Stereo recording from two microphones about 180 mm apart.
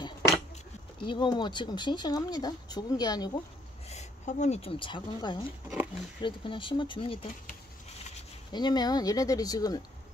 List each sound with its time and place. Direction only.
1.0 s speech: 25° left (ahead or behind)
3.9 s speech: 40° left (ahead or behind)
5.7 s speech: centre (ahead or behind)
6.2 s speech: 25° left (ahead or behind)
8.5 s speech: 25° left (ahead or behind)